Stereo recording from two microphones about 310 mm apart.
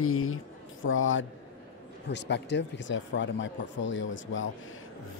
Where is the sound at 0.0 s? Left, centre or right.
Left.